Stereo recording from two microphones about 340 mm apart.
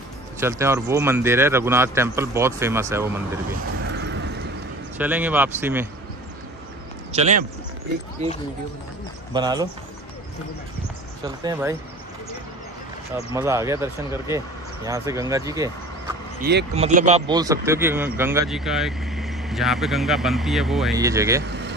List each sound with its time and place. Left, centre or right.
0.4 s a man's voice: centre
3.9 s vehicle: right
4.9 s speech: centre
7.1 s a man's voice: centre
11.2 s a man's voice: centre
13.3 s a man's voice: centre
16.3 s speech: right; by 21.5 s centre
21.5 s vehicle: right